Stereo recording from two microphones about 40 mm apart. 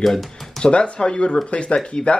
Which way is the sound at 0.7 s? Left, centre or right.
Left.